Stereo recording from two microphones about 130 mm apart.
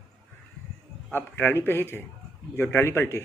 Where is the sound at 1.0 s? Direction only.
15° left (ahead or behind).